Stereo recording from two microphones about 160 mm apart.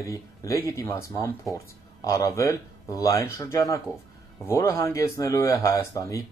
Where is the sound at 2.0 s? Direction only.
20° left (ahead or behind).